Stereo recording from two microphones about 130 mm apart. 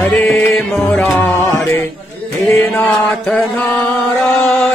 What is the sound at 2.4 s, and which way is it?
Mantra, 15° left (ahead or behind).